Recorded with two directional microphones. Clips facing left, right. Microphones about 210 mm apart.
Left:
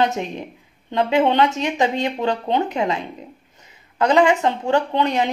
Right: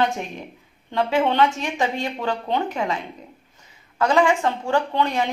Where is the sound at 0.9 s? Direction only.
20° left (ahead or behind).